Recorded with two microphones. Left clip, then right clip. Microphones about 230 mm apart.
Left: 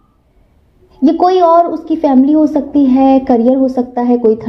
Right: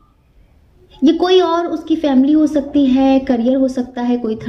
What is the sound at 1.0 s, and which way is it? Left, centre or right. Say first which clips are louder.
A woman's voice: left 3 dB; centre.